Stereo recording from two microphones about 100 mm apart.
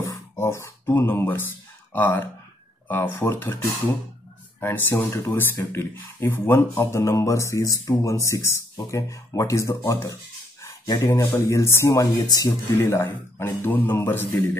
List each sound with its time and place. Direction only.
0.0 s speech: 25° left (ahead or behind)
12.0 s speech: 40° left (ahead or behind)
12.6 s speech: 25° left (ahead or behind)